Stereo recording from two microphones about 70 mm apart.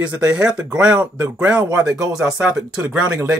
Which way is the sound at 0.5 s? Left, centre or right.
Centre.